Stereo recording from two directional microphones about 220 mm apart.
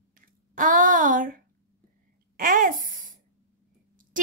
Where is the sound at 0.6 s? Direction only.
35° right (ahead or behind).